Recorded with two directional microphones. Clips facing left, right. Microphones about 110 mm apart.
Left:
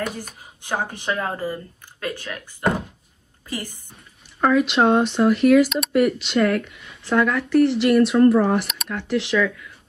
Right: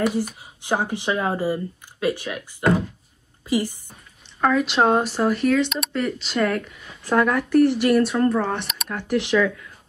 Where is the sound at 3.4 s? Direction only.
15° right (ahead or behind).